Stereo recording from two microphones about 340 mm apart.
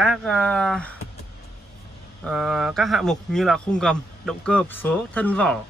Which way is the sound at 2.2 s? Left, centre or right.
Centre.